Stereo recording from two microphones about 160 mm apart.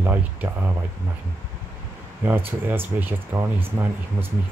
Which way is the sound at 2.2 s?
15° right (ahead or behind).